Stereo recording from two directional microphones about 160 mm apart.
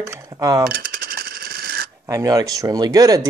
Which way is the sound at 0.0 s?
20° right (ahead or behind).